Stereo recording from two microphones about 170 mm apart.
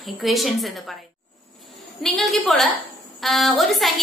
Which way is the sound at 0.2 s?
Centre (ahead or behind).